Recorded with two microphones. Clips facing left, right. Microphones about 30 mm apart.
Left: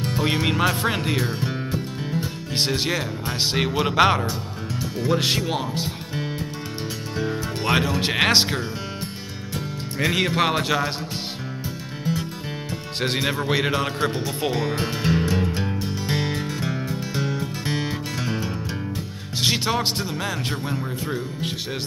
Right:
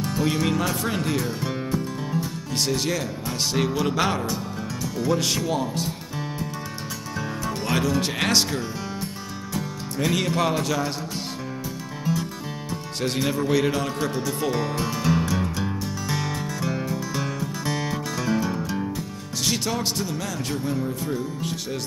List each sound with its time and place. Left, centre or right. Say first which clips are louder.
0.0 s music: left 1 dB; left
2.1 s speech: left 3 dB; left
12.0 s music: even; left
13.0 s speech: left 1 dB; left
14.6 s music: left 1 dB; left
19.4 s speech: left 4 dB; left